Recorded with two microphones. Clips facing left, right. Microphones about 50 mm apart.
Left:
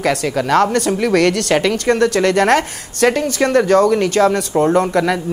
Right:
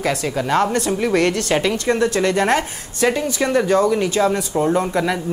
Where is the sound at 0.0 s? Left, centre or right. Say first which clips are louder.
Left 4 dB; left.